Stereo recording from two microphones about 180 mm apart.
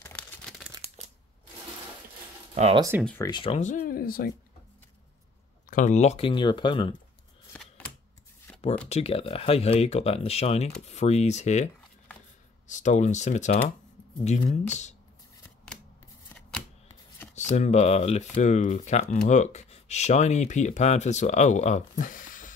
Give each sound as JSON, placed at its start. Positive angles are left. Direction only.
{"t": 0.0, "sound": "tearing", "side_deg": 5}
{"t": 2.5, "sound": "speech", "side_deg": -35}
{"t": 3.2, "sound": "speech", "side_deg": 25}
{"t": 3.5, "sound": "speech", "side_deg": 45}
{"t": 5.7, "sound": "speech", "side_deg": 45}
{"t": 7.5, "sound": "scissors", "side_deg": 5}
{"t": 8.8, "sound": "speech", "side_deg": 35}
{"t": 16.3, "sound": "shuffling cards", "side_deg": 5}
{"t": 17.5, "sound": "speech", "side_deg": 40}